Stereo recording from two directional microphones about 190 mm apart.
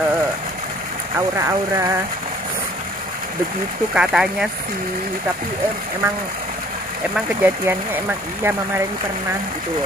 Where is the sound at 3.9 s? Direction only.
5° right (ahead or behind).